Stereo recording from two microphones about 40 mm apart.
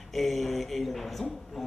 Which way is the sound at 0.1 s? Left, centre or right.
Centre.